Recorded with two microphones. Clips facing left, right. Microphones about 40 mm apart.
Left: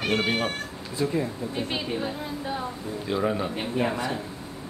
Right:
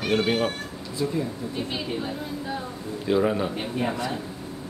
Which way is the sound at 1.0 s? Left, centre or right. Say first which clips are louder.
Left 1 dB; left.